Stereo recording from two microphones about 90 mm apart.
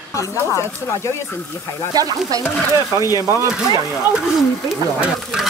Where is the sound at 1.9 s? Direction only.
45° right (ahead or behind).